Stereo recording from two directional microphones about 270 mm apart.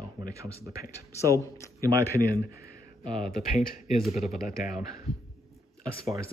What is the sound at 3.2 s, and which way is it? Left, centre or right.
Speech, left.